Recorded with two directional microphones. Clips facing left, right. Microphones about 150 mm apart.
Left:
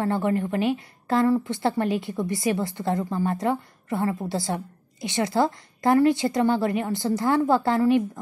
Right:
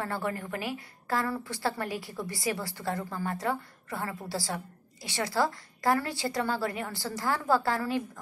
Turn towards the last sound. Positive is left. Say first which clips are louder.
# left 7 dB
turn(degrees=20)  # may be behind; listen again after turning